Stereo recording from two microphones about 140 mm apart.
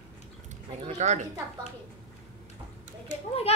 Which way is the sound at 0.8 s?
50° right (ahead or behind).